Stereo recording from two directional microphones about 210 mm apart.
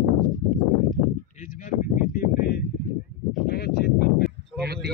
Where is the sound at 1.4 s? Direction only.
35° left (ahead or behind).